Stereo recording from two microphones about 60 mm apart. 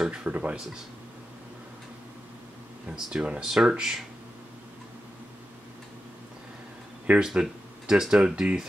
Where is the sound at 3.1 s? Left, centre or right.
Centre.